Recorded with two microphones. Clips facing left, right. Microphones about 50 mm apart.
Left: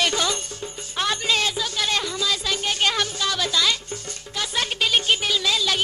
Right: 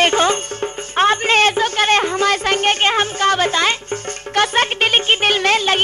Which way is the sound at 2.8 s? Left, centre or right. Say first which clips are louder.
Right 8 dB; right.